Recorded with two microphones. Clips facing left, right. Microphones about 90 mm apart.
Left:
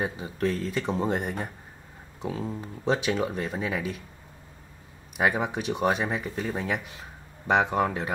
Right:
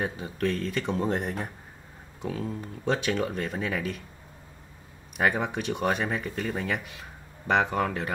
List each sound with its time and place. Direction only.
0.0 s speech: 5° left (ahead or behind)
2.2 s speech: 20° left (ahead or behind)
2.8 s speech: 5° left (ahead or behind)
5.1 s speech: 5° left (ahead or behind)